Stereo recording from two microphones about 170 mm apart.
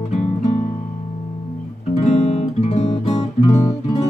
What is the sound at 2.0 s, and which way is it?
Music, 40° left (ahead or behind).